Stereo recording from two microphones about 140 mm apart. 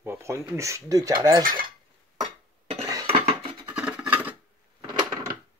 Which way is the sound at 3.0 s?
45° right (ahead or behind).